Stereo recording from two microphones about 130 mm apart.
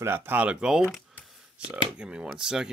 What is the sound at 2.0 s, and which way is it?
Speech, 10° right (ahead or behind).